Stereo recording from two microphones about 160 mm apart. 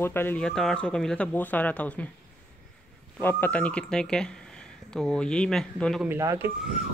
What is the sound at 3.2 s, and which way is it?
Speech, 10° left (ahead or behind).